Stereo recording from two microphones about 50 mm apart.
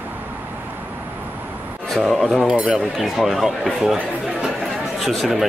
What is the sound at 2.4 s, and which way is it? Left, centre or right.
Speech, right.